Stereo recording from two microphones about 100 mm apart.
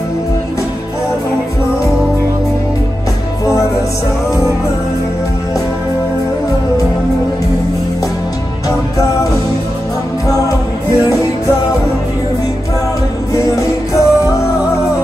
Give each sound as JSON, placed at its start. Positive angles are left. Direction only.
{"t": 13.3, "sound": "music", "side_deg": 30}